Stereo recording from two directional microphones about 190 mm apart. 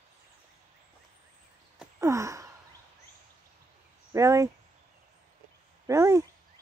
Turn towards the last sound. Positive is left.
turn(degrees=-15)  # may be behind; listen again after turning